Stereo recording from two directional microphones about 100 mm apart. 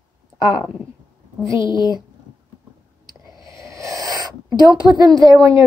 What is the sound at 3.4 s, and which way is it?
Speech, 30° right (ahead or behind).